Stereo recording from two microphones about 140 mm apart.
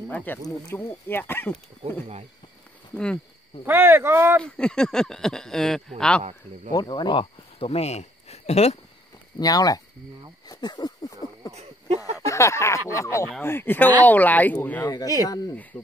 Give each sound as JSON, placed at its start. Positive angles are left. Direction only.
{"t": 0.1, "sound": "speech", "side_deg": 10}
{"t": 3.6, "sound": "speech", "side_deg": -15}
{"t": 4.4, "sound": "speech", "side_deg": 5}
{"t": 6.7, "sound": "speech", "side_deg": 30}
{"t": 9.4, "sound": "a sound", "side_deg": 25}
{"t": 12.3, "sound": "a sound", "side_deg": 20}
{"t": 13.4, "sound": "speech", "side_deg": 15}
{"t": 14.9, "sound": "a sound", "side_deg": 25}
{"t": 15.7, "sound": "cricket", "side_deg": 10}